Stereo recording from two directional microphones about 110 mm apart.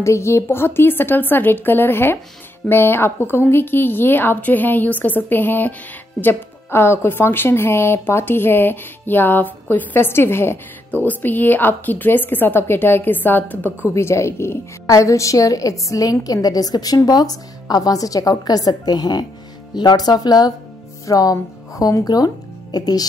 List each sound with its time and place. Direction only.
0.0 s a woman's voice: 25° left (ahead or behind)